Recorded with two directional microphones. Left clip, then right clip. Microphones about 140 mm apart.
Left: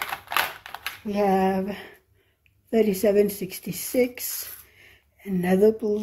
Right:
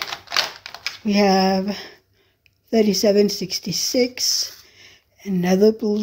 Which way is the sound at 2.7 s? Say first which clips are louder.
Right 3 dB; 35° right (ahead or behind).